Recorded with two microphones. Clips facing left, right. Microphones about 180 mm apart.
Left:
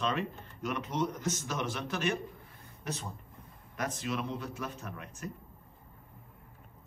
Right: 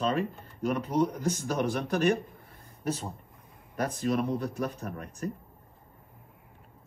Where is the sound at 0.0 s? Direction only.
35° right (ahead or behind).